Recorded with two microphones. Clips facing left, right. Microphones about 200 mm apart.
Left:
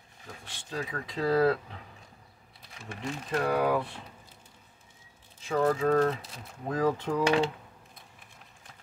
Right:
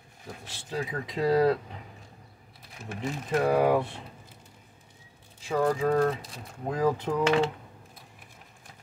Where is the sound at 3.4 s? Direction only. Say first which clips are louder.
Right 4 dB; 25° right (ahead or behind).